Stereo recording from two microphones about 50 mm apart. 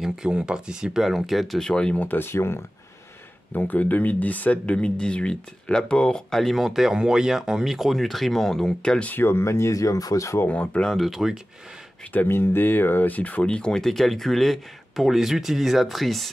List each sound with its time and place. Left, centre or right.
0.1 s speech: centre
1.0 s speech: centre
1.7 s speech: centre
2.0 s speech: left
2.2 s speech: left
3.5 s speech: left; by 6.5 s centre
6.5 s speech: centre
9.1 s speech: left
10.5 s speech: left
11.0 s speech: centre
12.3 s speech: left; by 16.3 s centre